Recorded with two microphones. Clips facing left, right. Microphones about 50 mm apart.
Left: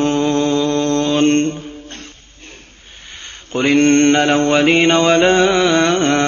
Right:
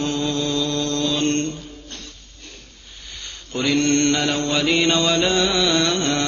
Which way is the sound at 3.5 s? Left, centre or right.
Left.